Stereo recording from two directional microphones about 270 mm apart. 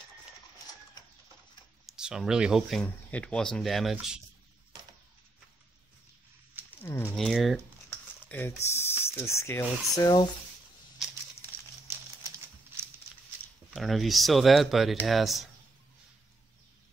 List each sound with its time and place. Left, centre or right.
1.9 s speech: centre
6.8 s speech: centre
7.9 s typing: centre
8.6 s speech: centre
11.9 s crumpling: centre
13.7 s speech: centre